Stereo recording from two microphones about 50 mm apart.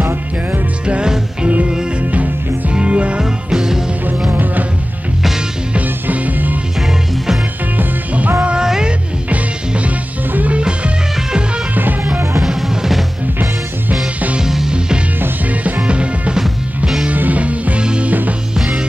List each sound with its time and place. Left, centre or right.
0.0 s music: right
0.8 s music: right
2.7 s music: right
4.3 s music: right
5.8 s music: right
7.7 s music: right
8.5 s music: centre
9.3 s music: right
11.7 s music: right
12.4 s music: centre
14.4 s music: centre
15.6 s music: right